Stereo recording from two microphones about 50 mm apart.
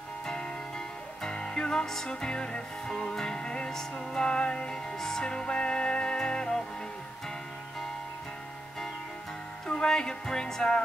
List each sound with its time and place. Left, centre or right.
0.3 s music: centre
9.7 s speech: centre